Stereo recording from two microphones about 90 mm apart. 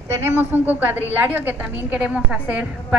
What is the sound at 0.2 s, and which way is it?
A woman's voice, 25° right (ahead or behind).